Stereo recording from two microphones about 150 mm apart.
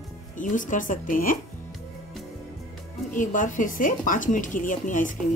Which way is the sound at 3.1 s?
60° left (ahead or behind).